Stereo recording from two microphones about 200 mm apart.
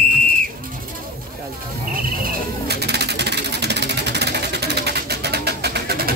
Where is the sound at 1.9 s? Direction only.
45° right (ahead or behind).